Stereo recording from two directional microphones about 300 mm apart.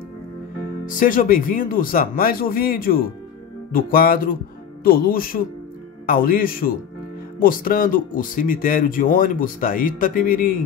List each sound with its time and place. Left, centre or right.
0.8 s speech: left